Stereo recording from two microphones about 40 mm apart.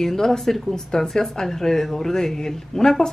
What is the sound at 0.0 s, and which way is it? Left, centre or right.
Speech, centre.